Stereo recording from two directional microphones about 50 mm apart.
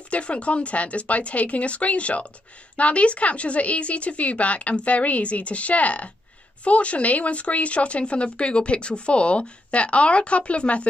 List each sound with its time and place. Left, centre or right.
0.1 s speech: left